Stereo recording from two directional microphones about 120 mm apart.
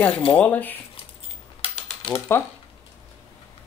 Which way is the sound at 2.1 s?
20° left (ahead or behind).